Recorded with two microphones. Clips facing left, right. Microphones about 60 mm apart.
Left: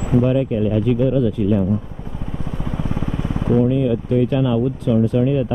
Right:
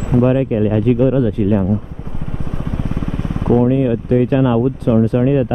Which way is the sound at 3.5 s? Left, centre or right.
Right.